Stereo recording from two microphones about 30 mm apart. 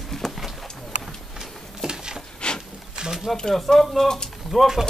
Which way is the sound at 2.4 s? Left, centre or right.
Left.